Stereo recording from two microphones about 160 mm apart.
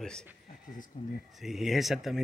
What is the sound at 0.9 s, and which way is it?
Speech, 50° left (ahead or behind).